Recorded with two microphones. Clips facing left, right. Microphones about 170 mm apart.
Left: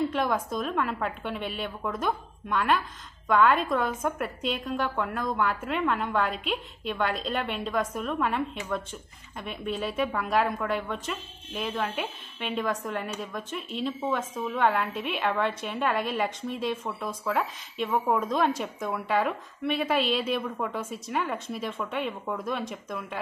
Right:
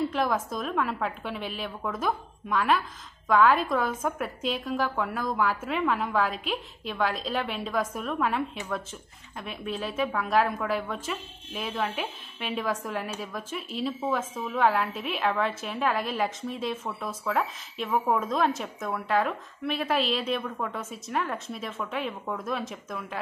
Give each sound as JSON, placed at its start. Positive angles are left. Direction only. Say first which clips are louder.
{"t": 0.1, "sound": "a woman's voice", "louder": "even", "side_deg": 0}